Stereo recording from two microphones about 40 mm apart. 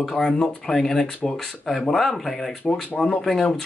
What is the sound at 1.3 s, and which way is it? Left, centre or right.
Speech, centre.